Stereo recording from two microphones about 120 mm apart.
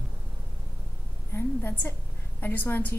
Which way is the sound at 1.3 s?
15° left (ahead or behind).